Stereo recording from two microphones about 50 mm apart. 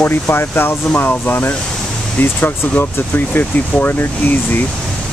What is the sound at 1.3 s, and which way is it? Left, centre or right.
Speech, left.